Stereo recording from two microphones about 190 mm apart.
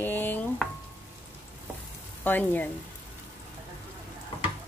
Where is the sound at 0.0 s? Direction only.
10° left (ahead or behind).